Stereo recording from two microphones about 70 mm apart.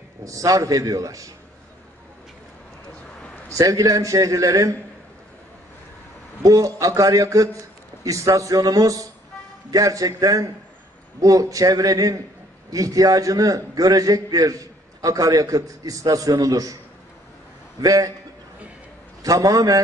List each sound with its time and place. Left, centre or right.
0.2 s a man's voice: right
3.4 s a man's voice: right
6.4 s a man's voice: right
17.7 s a man's voice: right
19.2 s a man's voice: right